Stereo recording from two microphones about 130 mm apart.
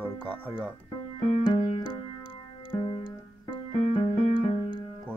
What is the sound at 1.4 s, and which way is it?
Music, 40° left (ahead or behind).